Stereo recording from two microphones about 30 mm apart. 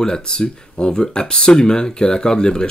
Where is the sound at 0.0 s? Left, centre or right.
Left.